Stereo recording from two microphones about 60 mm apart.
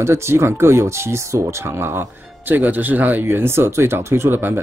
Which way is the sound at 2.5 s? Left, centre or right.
Right.